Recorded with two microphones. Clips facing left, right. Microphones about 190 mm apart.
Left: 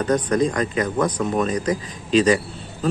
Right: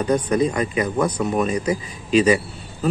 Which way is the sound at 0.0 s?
10° right (ahead or behind).